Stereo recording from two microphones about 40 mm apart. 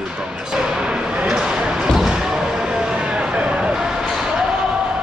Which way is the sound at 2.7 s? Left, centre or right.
Right.